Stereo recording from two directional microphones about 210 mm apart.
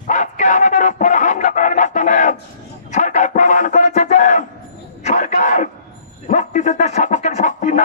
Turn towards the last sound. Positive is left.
turn(degrees=35)  # may be behind; listen again after turning